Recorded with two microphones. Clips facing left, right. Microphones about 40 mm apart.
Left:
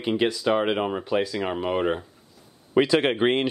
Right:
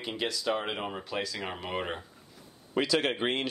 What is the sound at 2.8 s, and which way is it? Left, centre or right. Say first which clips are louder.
Speech: left 8 dB; left.